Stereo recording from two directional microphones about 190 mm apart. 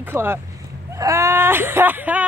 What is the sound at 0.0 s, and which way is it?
Speech, 10° right (ahead or behind).